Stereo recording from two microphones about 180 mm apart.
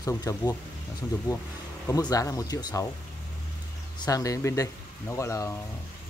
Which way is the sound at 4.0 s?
20° left (ahead or behind).